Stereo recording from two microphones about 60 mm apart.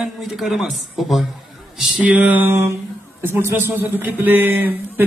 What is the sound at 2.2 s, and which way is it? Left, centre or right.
Speech, right.